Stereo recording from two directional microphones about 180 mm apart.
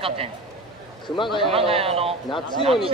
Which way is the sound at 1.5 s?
30° right (ahead or behind).